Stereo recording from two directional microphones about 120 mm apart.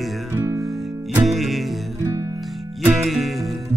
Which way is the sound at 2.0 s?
25° right (ahead or behind).